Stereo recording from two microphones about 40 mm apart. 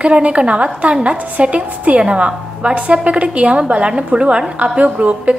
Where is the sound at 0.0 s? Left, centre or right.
Right.